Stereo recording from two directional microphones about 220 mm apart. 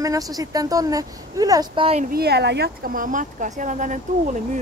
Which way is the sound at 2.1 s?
45° right (ahead or behind).